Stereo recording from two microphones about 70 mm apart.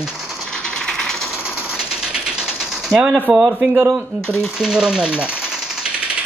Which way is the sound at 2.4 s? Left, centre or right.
Centre.